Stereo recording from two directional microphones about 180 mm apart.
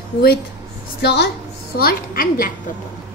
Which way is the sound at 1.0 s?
70° left (ahead or behind).